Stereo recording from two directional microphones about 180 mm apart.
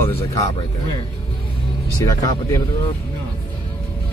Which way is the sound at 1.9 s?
20° left (ahead or behind).